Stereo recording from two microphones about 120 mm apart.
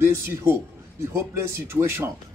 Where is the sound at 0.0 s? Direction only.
20° right (ahead or behind).